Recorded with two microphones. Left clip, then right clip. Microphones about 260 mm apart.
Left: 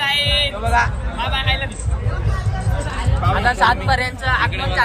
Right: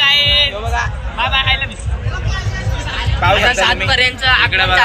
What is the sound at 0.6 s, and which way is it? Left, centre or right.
Speech, right.